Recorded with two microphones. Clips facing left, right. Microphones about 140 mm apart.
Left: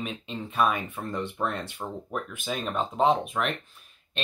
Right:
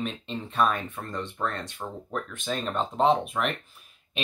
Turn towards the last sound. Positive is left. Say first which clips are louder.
# right 1 dB
turn(degrees=0)  # may be behind; listen again after turning